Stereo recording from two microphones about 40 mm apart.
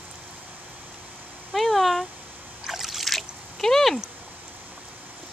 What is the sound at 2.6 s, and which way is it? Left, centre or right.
Splash, centre.